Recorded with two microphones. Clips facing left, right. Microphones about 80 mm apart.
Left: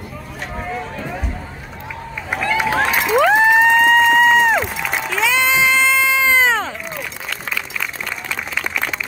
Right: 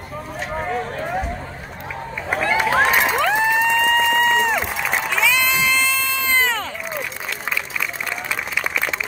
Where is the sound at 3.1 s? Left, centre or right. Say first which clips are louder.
Left 6 dB; centre.